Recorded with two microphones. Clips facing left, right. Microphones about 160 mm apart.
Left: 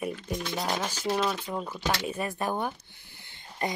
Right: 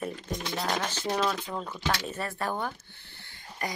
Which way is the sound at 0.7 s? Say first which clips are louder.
Even; 10° left (ahead or behind).